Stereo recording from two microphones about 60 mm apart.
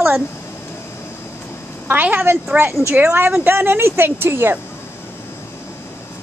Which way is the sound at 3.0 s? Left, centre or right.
Right.